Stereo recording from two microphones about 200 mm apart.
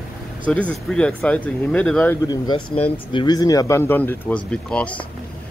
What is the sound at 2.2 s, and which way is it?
Speech, 20° left (ahead or behind).